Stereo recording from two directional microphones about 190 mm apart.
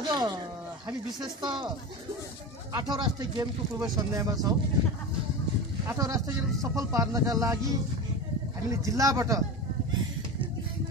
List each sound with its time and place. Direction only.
0.0 s speech: 20° right (ahead or behind)
1.4 s speech: 25° right (ahead or behind)
2.7 s speech: 20° right (ahead or behind)
5.9 s speech: 20° right (ahead or behind)